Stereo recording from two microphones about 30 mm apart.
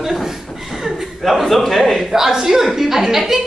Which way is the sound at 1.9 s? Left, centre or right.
Centre.